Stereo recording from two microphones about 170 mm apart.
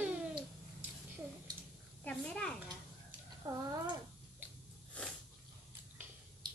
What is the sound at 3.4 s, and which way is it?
Speech, 20° right (ahead or behind).